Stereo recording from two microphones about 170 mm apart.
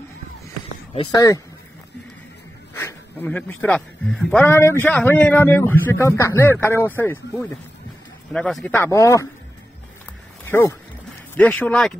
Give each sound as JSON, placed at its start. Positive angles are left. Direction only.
{"t": 0.9, "sound": "speech", "side_deg": 20}
{"t": 2.7, "sound": "a man's voice", "side_deg": 15}
{"t": 4.5, "sound": "a man's voice", "side_deg": 15}
{"t": 10.4, "sound": "a man's voice", "side_deg": 15}